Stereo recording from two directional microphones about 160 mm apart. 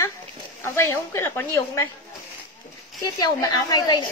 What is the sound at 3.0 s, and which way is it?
A woman's voice, 20° left (ahead or behind).